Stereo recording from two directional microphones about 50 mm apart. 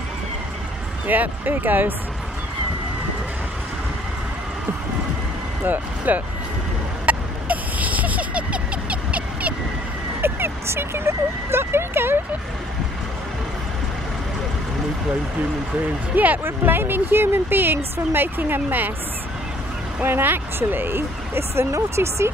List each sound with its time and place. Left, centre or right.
1.0 s speech: right
5.6 s speech: right
7.1 s a sound: right
10.2 s speech: right
16.4 s speech: right
20.0 s speech: right